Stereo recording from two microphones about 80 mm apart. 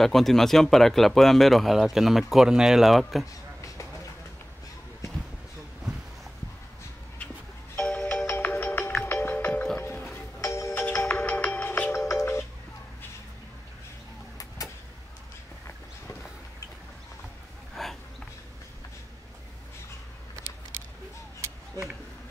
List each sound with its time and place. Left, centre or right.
0.0 s speech: centre
7.7 s doorbell: centre
8.3 s music: left
10.4 s music: left
11.1 s music: centre
12.0 s music: left
17.8 s a sound: centre